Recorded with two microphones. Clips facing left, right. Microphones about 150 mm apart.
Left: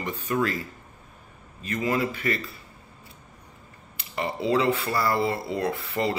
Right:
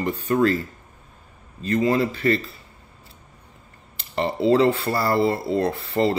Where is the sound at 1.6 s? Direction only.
35° right (ahead or behind).